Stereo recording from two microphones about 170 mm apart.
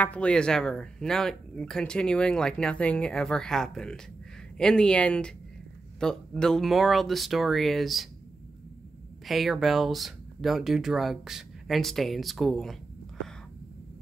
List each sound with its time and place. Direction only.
0.0 s speech: 5° left (ahead or behind)
9.2 s speech: centre (ahead or behind)